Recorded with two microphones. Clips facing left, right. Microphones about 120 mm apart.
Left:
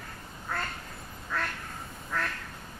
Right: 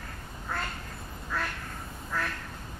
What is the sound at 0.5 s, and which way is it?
Quack, centre (ahead or behind).